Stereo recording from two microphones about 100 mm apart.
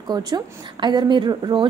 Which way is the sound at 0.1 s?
45° right (ahead or behind).